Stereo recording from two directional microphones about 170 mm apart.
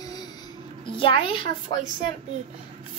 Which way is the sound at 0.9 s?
30° left (ahead or behind).